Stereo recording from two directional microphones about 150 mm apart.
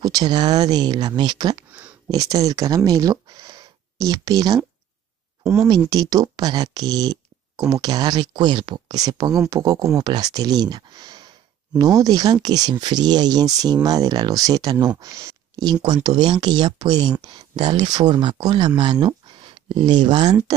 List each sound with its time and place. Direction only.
0.0 s speech: 25° right (ahead or behind)
1.7 s a sound: 10° right (ahead or behind)
2.0 s speech: 25° right (ahead or behind)
5.4 s speech: 5° right (ahead or behind)
5.9 s speech: 25° right (ahead or behind)